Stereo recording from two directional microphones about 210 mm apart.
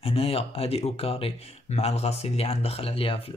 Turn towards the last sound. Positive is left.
turn(degrees=25)  # may be behind; listen again after turning